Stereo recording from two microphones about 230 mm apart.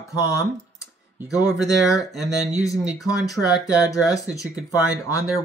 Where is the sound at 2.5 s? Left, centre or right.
Centre.